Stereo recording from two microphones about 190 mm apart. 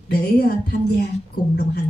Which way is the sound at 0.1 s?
55° left (ahead or behind).